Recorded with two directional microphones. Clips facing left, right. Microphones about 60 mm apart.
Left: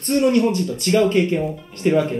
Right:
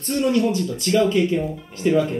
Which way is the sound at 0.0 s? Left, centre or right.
Left.